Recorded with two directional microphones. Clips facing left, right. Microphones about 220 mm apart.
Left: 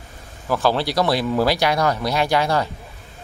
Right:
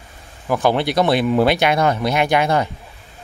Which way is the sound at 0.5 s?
20° right (ahead or behind).